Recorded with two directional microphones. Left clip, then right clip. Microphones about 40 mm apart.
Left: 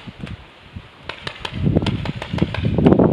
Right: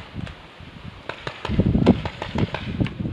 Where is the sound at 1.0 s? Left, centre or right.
Left.